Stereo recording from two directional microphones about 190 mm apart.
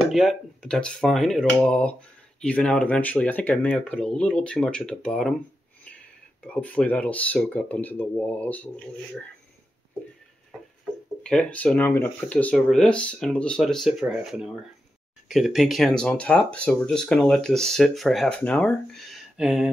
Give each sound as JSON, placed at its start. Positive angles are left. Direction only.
{"t": 0.1, "sound": "speech", "side_deg": 0}
{"t": 6.4, "sound": "speech", "side_deg": 5}
{"t": 11.2, "sound": "speech", "side_deg": 5}